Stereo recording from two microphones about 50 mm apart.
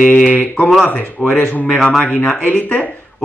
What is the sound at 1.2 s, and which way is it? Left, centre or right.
Speech, left.